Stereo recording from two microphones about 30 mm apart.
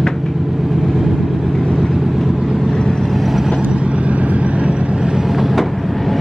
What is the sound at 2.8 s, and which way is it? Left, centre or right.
Vehicle, centre.